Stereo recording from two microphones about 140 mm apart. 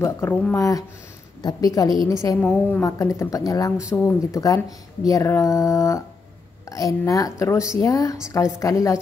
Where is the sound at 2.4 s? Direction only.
10° left (ahead or behind).